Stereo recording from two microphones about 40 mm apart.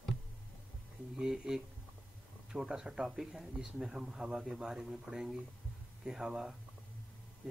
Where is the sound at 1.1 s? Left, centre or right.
Centre.